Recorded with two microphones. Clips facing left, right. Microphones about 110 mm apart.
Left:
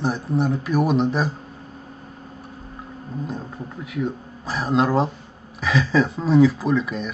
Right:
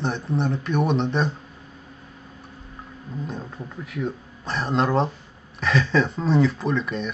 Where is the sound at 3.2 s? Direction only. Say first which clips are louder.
Left 2 dB; 5° left (ahead or behind).